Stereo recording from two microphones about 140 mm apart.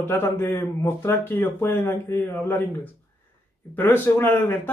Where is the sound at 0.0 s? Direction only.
15° left (ahead or behind).